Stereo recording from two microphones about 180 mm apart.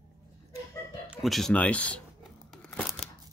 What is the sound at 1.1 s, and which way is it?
Tearing, centre (ahead or behind).